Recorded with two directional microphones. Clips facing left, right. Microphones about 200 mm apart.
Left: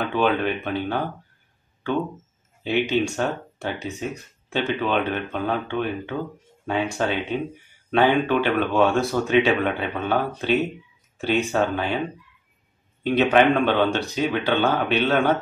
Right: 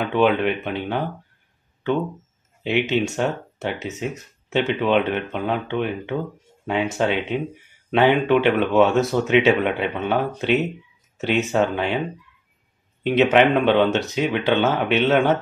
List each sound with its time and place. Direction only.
0.1 s speech: 20° right (ahead or behind)
2.6 s speech: 20° right (ahead or behind)
13.0 s speech: 20° right (ahead or behind)